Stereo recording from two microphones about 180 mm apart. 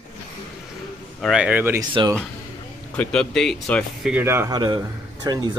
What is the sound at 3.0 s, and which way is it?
Speech, 5° left (ahead or behind).